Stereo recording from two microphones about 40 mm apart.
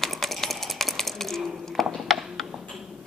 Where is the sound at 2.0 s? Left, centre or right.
Centre.